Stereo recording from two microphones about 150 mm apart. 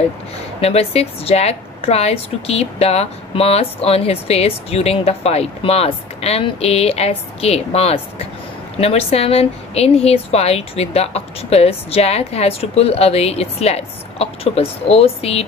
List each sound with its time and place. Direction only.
0.6 s a woman's voice: 40° left (ahead or behind)